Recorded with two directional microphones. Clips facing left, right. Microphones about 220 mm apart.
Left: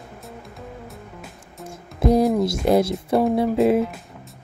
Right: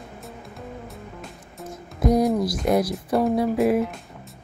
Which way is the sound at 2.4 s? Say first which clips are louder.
Left 3 dB; 25° left (ahead or behind).